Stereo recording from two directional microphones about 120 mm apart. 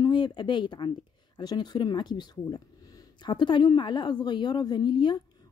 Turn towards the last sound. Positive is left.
turn(degrees=40)  # may be behind; listen again after turning